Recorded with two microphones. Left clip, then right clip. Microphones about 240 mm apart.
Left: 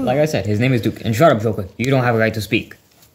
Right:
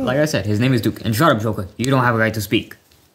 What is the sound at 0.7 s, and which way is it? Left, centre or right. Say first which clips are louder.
Speech: even; centre.